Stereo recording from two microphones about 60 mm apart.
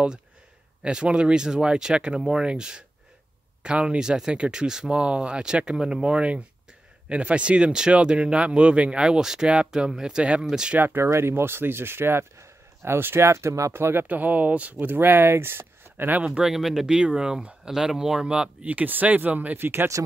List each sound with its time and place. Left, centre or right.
0.8 s speech: centre
9.0 s speech: centre
11.0 s speech: right
14.0 s speech: right
16.2 s speech: centre; by 19.9 s right